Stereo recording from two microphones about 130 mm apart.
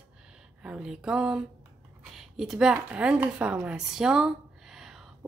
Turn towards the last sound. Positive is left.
turn(degrees=-5)  # may be behind; listen again after turning